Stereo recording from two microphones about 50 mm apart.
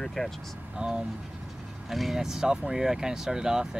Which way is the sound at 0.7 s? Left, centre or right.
Centre.